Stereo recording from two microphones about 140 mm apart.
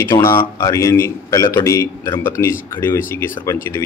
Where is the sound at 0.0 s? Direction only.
20° left (ahead or behind).